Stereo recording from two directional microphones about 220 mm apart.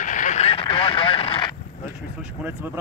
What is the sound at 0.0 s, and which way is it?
Vehicle, 35° left (ahead or behind).